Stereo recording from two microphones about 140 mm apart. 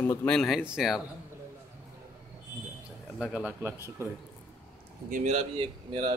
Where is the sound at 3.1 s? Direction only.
Centre (ahead or behind).